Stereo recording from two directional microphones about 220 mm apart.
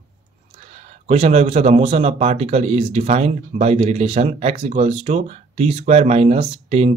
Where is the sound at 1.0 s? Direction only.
30° right (ahead or behind).